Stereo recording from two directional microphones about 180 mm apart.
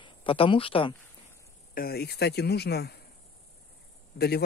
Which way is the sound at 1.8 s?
60° left (ahead or behind).